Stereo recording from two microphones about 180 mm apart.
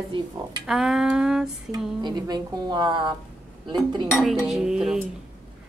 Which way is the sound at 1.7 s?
20° right (ahead or behind).